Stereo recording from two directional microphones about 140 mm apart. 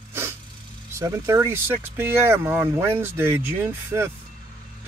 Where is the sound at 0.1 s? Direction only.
20° right (ahead or behind).